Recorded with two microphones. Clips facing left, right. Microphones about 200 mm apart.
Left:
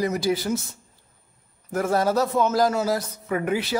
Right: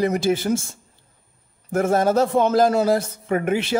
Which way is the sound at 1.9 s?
25° right (ahead or behind).